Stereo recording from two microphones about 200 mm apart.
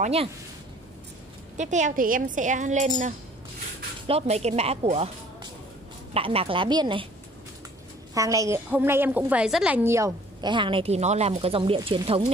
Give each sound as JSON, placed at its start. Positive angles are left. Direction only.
{"t": 0.0, "sound": "a woman's voice", "side_deg": -30}
{"t": 1.6, "sound": "a woman's voice", "side_deg": -35}
{"t": 4.1, "sound": "a woman's voice", "side_deg": -35}
{"t": 8.1, "sound": "a woman's voice", "side_deg": -15}